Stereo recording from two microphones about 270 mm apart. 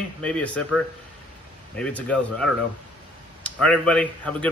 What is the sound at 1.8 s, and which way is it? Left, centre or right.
A man's voice, centre.